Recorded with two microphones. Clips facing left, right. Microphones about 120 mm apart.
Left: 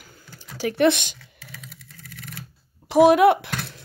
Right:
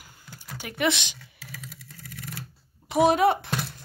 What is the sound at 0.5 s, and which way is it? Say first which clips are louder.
Speech: left 8 dB; 90° left.